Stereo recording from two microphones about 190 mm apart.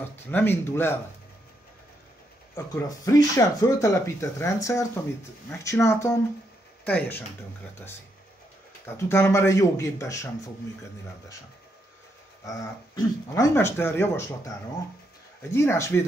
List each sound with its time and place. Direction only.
0.3 s speech: 10° left (ahead or behind)
2.5 s speech: 20° left (ahead or behind)
12.4 s speech: 15° left (ahead or behind)
15.5 s speech: 15° left (ahead or behind)